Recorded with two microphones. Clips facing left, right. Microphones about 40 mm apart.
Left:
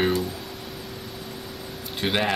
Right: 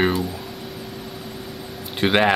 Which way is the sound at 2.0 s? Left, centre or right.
Right.